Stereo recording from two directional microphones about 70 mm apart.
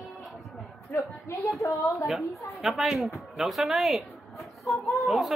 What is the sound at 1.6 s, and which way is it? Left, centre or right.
Speech, left.